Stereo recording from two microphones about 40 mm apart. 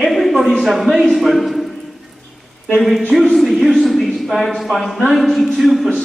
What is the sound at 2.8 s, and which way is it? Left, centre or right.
Speech, centre.